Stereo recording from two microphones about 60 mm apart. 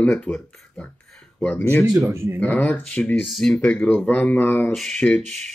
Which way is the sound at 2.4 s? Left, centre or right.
Left.